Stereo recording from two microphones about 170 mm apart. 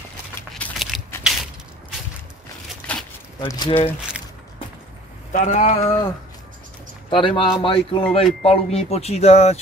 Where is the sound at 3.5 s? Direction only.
25° left (ahead or behind).